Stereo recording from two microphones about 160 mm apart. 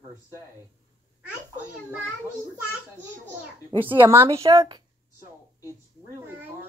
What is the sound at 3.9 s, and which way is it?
Speech, 15° right (ahead or behind).